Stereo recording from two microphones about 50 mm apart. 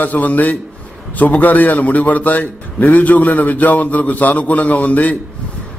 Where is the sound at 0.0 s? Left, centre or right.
Left.